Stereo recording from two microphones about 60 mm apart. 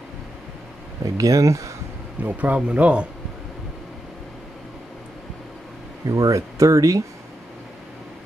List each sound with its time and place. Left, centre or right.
1.1 s speech: right
2.2 s speech: right
6.0 s speech: right